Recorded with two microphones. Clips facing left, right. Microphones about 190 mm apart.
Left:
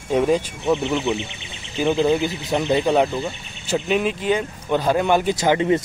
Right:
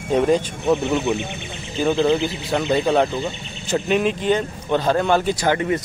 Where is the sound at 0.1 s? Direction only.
5° left (ahead or behind).